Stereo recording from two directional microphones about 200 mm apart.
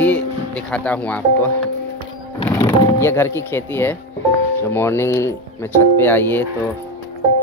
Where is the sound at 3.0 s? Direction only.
15° left (ahead or behind).